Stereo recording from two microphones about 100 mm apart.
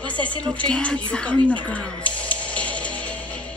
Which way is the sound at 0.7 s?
10° left (ahead or behind).